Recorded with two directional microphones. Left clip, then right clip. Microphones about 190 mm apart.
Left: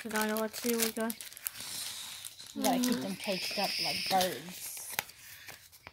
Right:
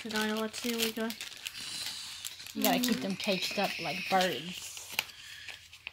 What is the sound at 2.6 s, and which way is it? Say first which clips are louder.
Speech: right 1 dB; 10° right (ahead or behind).